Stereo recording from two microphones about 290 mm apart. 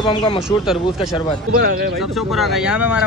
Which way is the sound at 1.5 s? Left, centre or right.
Right.